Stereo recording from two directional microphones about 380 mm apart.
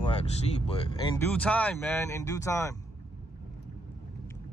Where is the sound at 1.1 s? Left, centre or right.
Centre.